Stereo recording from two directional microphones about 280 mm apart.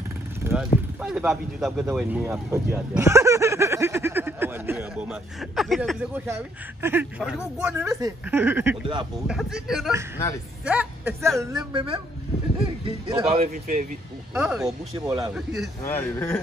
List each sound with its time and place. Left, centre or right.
0.4 s vehicle: centre
1.0 s speech: centre; by 13.8 s right
14.3 s speech: centre
15.0 s speech: centre
15.3 s speech: centre